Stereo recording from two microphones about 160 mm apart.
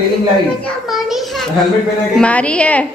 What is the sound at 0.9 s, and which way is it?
A woman's voice, centre (ahead or behind).